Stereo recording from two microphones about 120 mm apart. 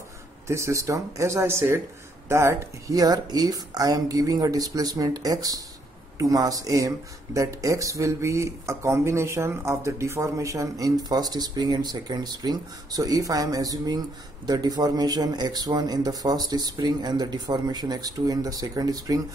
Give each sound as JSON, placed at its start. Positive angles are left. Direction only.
{"t": 0.5, "sound": "speech", "side_deg": -25}